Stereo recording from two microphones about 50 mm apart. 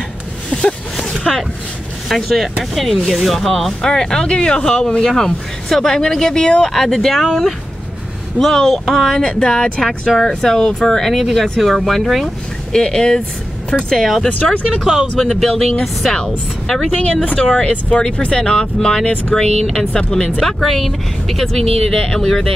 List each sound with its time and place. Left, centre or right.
0.5 s a sound: centre
2.0 s speech: centre
3.8 s speech: centre
8.4 s speech: centre
9.3 s speech: centre
9.8 s speech: centre
10.2 s speech: centre
12.7 s speech: centre
14.0 s speech: centre
15.2 s speech: centre
17.1 s speech: left
20.4 s speech: centre